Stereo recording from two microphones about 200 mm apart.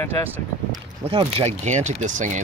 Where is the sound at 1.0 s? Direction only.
30° right (ahead or behind).